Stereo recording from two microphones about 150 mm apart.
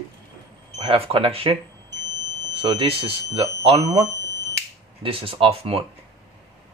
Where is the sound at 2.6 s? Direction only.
40° right (ahead or behind).